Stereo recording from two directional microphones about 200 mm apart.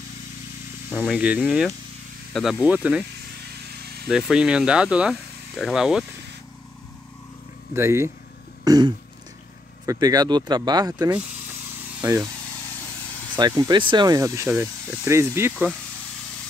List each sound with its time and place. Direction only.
0.9 s speech: centre (ahead or behind)
3.6 s vehicle: 55° right (ahead or behind)
4.1 s speech: 5° right (ahead or behind)
7.7 s speech: 15° right (ahead or behind)
8.6 s throat clearing: 20° right (ahead or behind)
9.8 s speech: 20° right (ahead or behind)
13.4 s speech: 20° right (ahead or behind)